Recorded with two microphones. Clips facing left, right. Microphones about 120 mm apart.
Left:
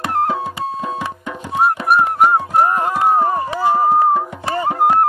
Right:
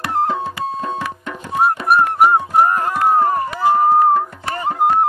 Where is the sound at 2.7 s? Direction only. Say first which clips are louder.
Even; 20° left (ahead or behind).